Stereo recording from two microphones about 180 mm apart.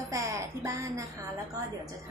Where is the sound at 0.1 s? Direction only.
15° right (ahead or behind).